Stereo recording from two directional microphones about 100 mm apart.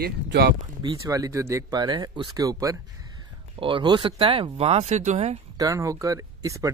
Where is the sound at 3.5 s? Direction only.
55° right (ahead or behind); by 5.4 s 90° right.